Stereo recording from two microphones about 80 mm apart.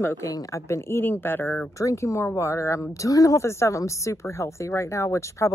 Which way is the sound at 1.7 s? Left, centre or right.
Left.